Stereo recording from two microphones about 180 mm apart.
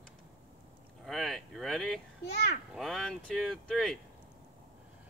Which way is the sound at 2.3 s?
70° left (ahead or behind).